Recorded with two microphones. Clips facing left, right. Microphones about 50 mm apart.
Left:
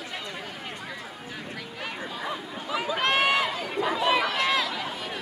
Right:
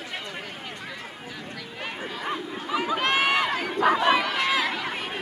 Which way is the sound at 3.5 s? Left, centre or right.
Right.